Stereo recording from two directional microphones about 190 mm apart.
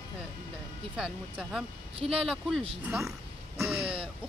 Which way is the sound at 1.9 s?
30° right (ahead or behind).